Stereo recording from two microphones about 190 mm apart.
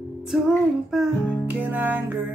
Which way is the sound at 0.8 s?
Centre (ahead or behind).